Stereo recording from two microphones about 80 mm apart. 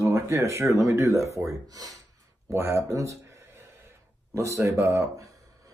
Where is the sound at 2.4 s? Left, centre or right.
Right.